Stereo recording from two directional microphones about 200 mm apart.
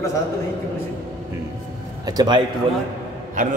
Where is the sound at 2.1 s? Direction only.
20° right (ahead or behind).